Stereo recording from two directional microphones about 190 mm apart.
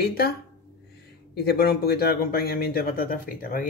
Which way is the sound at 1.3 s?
55° left (ahead or behind).